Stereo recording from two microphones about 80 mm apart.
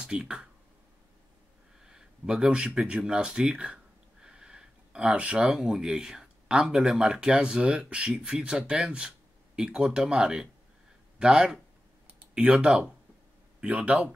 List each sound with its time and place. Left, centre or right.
0.0 s speech: centre
1.9 s speech: centre
12.1 s computer keyboard: centre
13.6 s speech: centre